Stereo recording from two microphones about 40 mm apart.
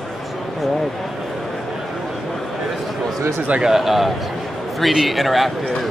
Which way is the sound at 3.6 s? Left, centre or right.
Centre.